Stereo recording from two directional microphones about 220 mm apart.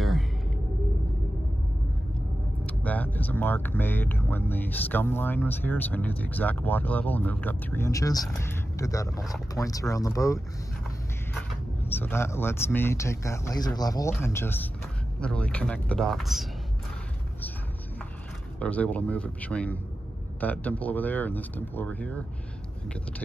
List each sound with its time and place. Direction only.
2.6 s speech: 5° left (ahead or behind)
11.8 s speech: 10° left (ahead or behind)
18.6 s speech: 5° left (ahead or behind)